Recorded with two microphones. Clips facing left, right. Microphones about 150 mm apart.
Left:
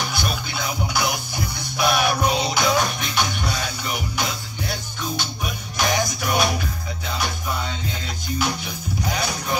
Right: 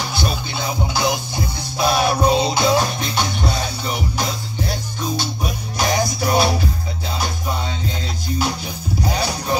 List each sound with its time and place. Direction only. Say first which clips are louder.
0.1 s music: right 3 dB; 25° right (ahead or behind)
8.4 s music: right 1 dB; 35° right (ahead or behind)